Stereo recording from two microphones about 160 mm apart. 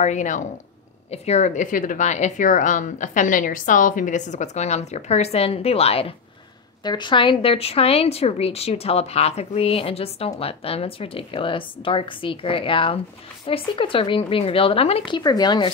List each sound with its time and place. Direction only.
0.0 s a woman's voice: 50° left (ahead or behind)
6.8 s a woman's voice: 25° left (ahead or behind)